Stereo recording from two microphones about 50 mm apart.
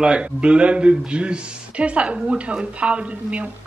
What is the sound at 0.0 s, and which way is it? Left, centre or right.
Speech, centre.